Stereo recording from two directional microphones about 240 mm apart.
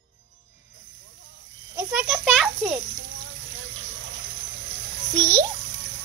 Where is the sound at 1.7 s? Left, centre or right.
Centre.